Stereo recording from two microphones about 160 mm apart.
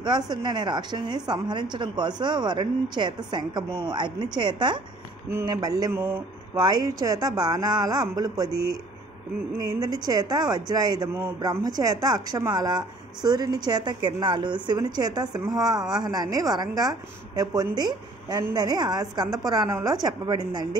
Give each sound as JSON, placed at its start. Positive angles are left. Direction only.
{"t": 0.3, "sound": "a woman's voice", "side_deg": -30}
{"t": 9.6, "sound": "a woman's voice", "side_deg": -20}